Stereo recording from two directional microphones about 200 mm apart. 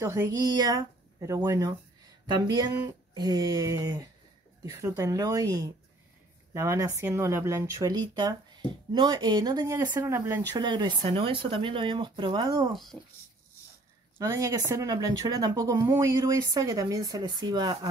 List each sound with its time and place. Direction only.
0.0 s speech: 15° right (ahead or behind)
12.7 s speech: centre (ahead or behind)
14.2 s speech: 15° right (ahead or behind)